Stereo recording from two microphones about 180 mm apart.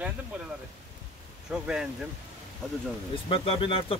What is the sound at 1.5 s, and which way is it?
Speech, 5° right (ahead or behind).